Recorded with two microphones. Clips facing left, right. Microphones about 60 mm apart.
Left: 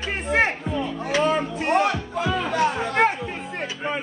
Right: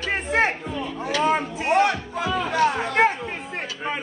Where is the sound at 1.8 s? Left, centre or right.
Centre.